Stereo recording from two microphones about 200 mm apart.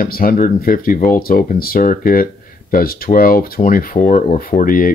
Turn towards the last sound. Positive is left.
turn(degrees=45)  # may be behind; listen again after turning